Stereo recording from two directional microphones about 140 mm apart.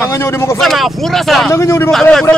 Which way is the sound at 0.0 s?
20° left (ahead or behind).